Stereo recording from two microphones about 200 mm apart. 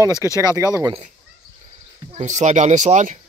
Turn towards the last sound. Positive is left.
turn(degrees=-35)  # may be behind; listen again after turning